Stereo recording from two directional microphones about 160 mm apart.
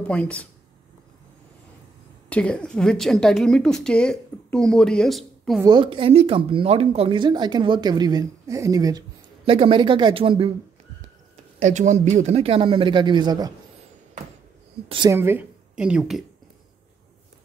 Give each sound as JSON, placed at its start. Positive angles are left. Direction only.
{"t": 0.0, "sound": "speech", "side_deg": 10}
{"t": 2.2, "sound": "a woman's voice", "side_deg": 5}
{"t": 5.7, "sound": "speech", "side_deg": -30}
{"t": 11.6, "sound": "speech", "side_deg": -50}
{"t": 15.0, "sound": "speech", "side_deg": -15}